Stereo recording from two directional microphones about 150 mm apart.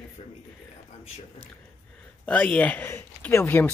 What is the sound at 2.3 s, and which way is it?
Speech, 10° left (ahead or behind).